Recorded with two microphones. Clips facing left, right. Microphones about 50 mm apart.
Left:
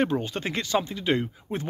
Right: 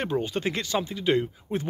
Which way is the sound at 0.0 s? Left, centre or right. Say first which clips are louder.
Left 1 dB; centre.